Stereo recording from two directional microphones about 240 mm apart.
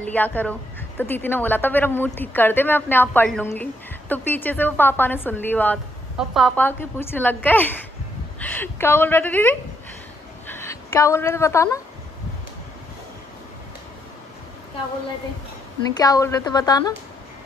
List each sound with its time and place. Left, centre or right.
0.0 s a woman's voice: centre
16.0 s a woman's voice: centre